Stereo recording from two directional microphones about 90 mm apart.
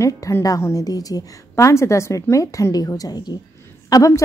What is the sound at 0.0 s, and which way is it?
A woman's voice, 35° left (ahead or behind).